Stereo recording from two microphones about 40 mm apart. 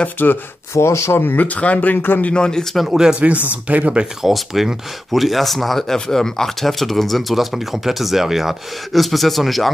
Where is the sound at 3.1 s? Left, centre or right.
Right.